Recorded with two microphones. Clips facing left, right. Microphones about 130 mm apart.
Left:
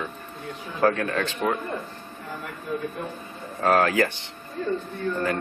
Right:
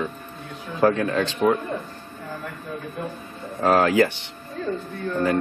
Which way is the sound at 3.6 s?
15° right (ahead or behind).